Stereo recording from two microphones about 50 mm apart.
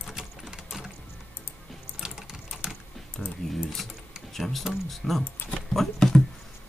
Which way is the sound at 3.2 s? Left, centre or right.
Centre.